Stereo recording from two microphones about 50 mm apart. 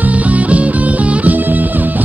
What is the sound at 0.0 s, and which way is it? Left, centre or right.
Music, right.